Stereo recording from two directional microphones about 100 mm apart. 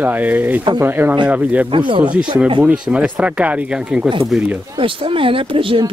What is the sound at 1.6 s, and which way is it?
Speech, 60° right (ahead or behind).